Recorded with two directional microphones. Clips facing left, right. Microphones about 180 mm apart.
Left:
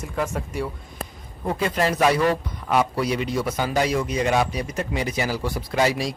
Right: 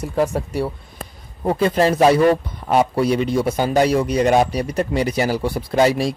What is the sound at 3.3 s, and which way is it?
Speech, 30° right (ahead or behind).